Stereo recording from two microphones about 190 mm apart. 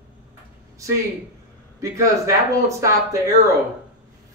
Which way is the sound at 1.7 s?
15° right (ahead or behind).